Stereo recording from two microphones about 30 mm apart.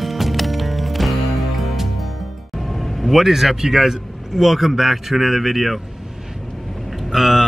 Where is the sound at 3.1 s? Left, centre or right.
Centre.